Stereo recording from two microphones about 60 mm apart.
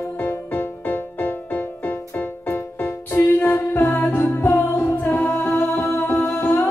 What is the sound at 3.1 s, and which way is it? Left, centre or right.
Music, left.